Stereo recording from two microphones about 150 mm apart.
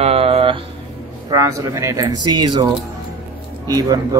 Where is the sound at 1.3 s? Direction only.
20° right (ahead or behind).